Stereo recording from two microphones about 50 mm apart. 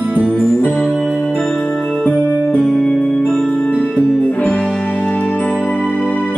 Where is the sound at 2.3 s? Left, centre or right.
Left.